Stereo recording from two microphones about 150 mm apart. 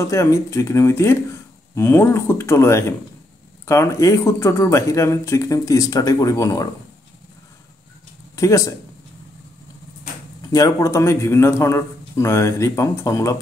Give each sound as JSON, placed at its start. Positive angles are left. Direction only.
{"t": 0.0, "sound": "speech", "side_deg": 20}
{"t": 8.4, "sound": "speech", "side_deg": 20}
{"t": 10.5, "sound": "speech", "side_deg": 20}